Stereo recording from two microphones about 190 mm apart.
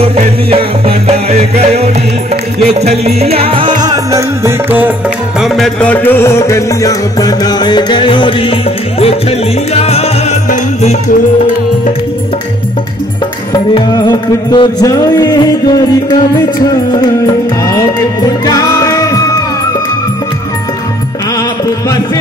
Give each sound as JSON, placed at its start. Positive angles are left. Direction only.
{"t": 0.0, "sound": "music", "side_deg": -30}
{"t": 3.8, "sound": "music", "side_deg": -20}
{"t": 5.4, "sound": "music", "side_deg": 5}
{"t": 9.8, "sound": "music", "side_deg": 35}
{"t": 13.5, "sound": "music", "side_deg": 20}
{"t": 18.4, "sound": "music", "side_deg": 20}